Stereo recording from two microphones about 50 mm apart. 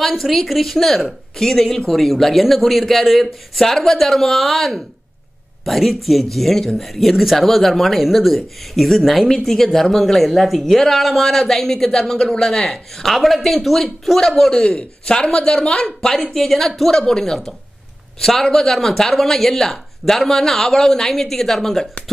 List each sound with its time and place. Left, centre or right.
0.2 s speech: centre
14.6 s speech: left; by 21.8 s centre